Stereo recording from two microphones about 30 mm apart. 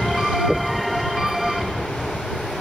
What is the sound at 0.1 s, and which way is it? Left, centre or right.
Thunder, centre.